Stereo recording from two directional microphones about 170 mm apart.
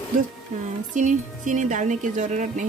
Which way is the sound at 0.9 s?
50° right (ahead or behind).